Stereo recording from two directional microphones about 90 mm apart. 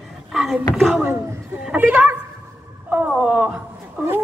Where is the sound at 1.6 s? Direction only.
15° right (ahead or behind).